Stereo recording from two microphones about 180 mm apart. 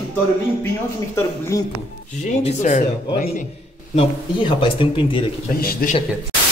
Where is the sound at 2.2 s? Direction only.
40° left (ahead or behind).